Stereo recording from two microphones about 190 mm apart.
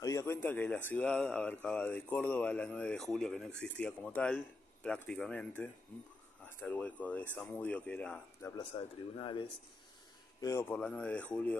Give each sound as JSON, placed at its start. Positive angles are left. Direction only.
{"t": 0.0, "sound": "speech", "side_deg": 15}
{"t": 9.2, "sound": "speech", "side_deg": 25}
{"t": 10.4, "sound": "speech", "side_deg": 15}